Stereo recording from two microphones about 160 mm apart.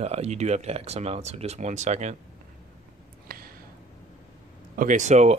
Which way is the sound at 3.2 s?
65° right (ahead or behind).